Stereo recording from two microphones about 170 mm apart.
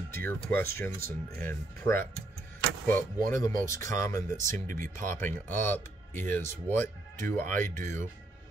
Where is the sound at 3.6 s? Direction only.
15° left (ahead or behind).